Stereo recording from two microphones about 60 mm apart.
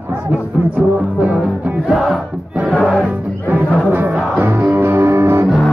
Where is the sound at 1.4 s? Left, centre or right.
Centre.